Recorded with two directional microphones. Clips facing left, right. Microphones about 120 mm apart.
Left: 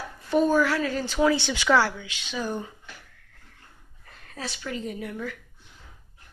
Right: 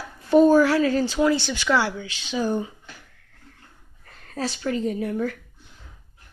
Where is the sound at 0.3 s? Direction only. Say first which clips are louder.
Right 6 dB; 30° right (ahead or behind).